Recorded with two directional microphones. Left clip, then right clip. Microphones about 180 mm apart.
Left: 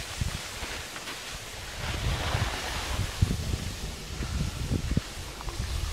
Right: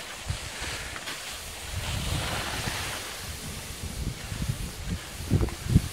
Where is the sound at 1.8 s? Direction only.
50° right (ahead or behind).